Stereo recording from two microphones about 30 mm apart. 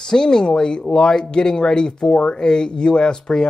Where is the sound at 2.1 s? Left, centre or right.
Left.